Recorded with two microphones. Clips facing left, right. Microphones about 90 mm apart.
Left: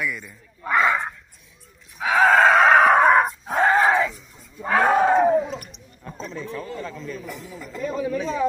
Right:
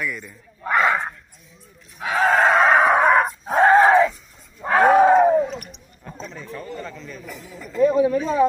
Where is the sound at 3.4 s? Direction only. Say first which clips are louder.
Right 8 dB; 15° right (ahead or behind).